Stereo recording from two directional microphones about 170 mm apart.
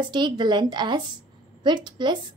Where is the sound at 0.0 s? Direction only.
25° right (ahead or behind).